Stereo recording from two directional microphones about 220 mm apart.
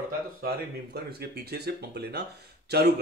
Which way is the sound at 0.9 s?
45° right (ahead or behind).